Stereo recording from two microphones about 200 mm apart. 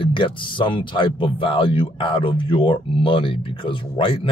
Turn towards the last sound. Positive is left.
turn(degrees=25)  # may be behind; listen again after turning